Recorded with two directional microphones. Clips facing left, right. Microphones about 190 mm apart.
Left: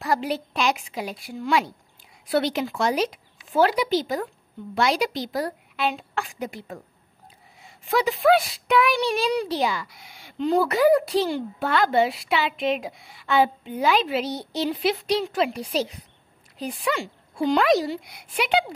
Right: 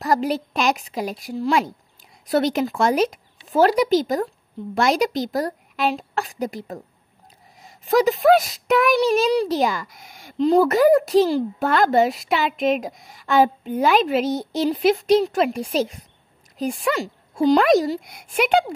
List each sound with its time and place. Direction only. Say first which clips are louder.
0.0 s a woman's voice: right 4 dB; 40° right (ahead or behind)